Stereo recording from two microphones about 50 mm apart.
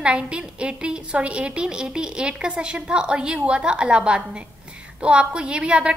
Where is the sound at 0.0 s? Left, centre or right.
Centre.